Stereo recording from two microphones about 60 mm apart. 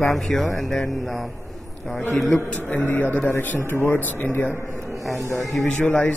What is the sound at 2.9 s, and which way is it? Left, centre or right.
A man's voice, left.